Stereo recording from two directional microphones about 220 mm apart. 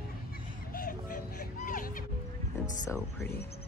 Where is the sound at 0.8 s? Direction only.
40° left (ahead or behind).